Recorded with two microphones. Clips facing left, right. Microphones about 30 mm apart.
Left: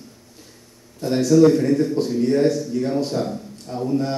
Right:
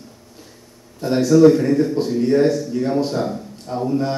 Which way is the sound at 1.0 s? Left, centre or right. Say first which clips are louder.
Right 2 dB; centre.